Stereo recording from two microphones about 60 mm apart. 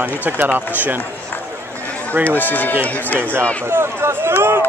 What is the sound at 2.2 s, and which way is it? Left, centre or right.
Speech, left.